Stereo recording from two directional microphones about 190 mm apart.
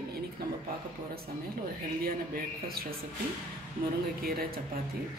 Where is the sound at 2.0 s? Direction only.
50° right (ahead or behind).